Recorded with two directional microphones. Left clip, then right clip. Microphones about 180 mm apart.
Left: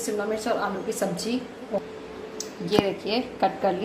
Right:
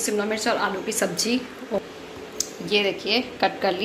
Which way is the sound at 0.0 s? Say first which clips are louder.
Right 3 dB; centre (ahead or behind).